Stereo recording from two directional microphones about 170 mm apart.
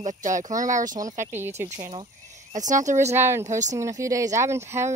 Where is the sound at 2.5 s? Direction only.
45° right (ahead or behind).